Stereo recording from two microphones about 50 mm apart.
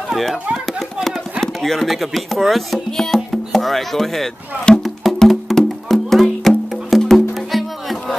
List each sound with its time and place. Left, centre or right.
1.4 s speech: centre
4.7 s music: centre
5.2 s music: centre
7.0 s music: centre
7.3 s music: centre